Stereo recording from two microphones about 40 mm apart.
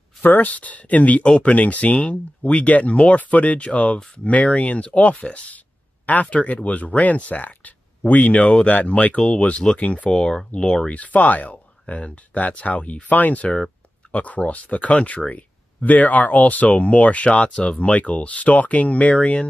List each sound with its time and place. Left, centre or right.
0.2 s speech: left
0.5 s speech: left
1.2 s speech: left
1.5 s speech: left